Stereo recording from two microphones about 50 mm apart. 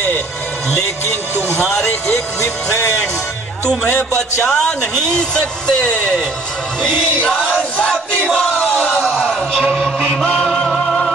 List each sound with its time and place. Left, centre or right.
3.8 s a man's voice: centre
6.8 s a sound: centre
9.8 s music: centre
10.4 s music: centre